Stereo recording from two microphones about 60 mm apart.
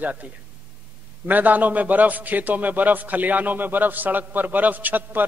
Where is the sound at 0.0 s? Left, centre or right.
Right.